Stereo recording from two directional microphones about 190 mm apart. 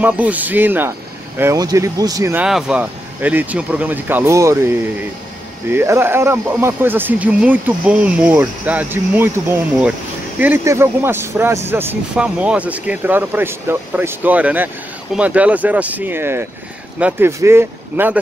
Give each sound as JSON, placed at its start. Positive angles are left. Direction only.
{"t": 0.0, "sound": "speech", "side_deg": -10}
{"t": 2.4, "sound": "speech", "side_deg": -5}
{"t": 10.4, "sound": "speech", "side_deg": -15}